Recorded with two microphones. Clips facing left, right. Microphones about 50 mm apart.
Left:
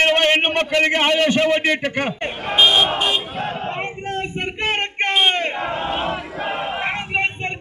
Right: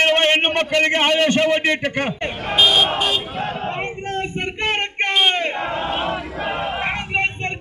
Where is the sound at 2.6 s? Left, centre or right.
Left.